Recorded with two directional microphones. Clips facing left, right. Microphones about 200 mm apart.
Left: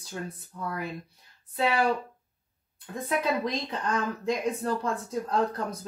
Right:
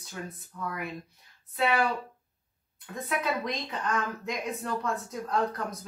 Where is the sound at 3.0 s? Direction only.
30° left (ahead or behind).